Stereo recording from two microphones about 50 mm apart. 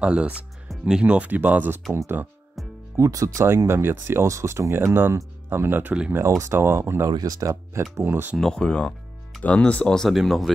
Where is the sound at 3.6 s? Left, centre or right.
Right.